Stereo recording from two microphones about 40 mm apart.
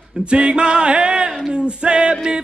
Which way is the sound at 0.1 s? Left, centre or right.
Right.